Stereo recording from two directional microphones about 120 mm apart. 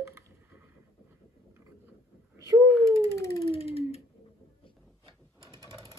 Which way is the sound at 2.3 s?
30° right (ahead or behind).